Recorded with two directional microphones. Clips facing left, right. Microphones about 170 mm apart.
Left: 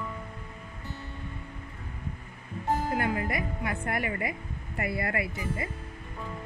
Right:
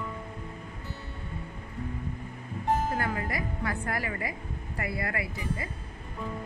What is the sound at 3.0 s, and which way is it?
Speech, 20° left (ahead or behind).